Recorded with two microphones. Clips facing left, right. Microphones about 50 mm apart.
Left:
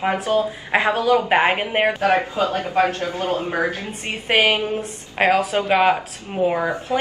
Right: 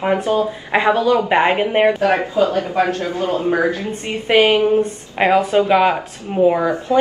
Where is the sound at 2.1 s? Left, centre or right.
Right.